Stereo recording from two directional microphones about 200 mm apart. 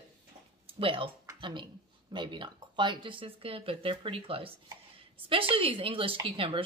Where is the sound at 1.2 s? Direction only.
25° right (ahead or behind).